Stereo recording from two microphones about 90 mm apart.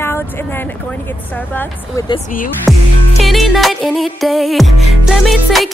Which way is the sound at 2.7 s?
Centre (ahead or behind).